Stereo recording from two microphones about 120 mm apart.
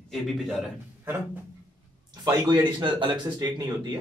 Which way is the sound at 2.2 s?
35° right (ahead or behind).